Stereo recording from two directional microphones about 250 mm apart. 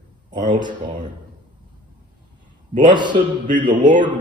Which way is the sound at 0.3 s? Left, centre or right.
Centre.